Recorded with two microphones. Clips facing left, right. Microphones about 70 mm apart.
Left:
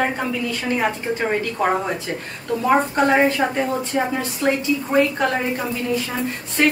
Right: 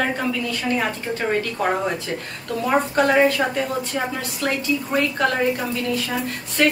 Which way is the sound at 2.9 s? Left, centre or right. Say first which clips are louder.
Even; left.